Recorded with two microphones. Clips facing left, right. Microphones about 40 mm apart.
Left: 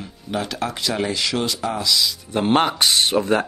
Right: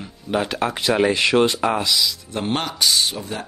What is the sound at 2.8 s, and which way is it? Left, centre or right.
Speech, left.